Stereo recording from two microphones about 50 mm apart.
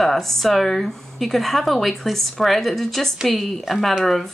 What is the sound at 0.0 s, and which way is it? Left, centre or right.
Speech, centre.